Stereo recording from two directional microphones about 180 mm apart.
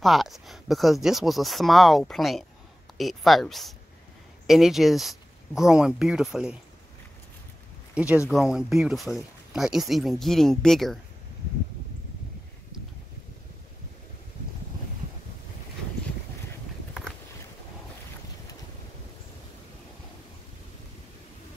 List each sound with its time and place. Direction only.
0.0 s speech: centre (ahead or behind)
7.9 s speech: 5° right (ahead or behind)